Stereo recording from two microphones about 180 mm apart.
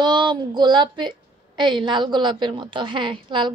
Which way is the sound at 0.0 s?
25° right (ahead or behind).